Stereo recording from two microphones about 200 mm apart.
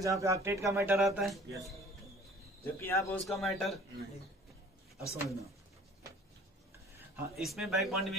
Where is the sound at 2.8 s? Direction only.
10° left (ahead or behind).